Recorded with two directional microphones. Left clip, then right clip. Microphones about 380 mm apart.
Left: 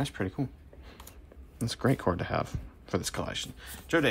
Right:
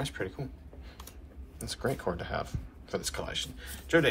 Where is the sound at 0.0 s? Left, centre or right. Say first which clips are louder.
Left 2 dB; centre.